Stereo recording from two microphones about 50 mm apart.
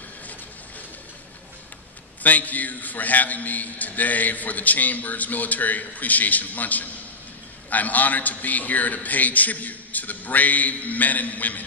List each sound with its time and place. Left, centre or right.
2.2 s a man's voice: left